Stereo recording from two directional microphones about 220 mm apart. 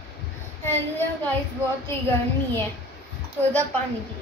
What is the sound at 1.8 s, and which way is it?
Speech, 10° left (ahead or behind).